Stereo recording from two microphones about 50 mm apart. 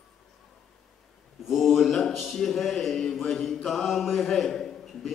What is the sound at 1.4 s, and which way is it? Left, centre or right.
A man's voice, centre.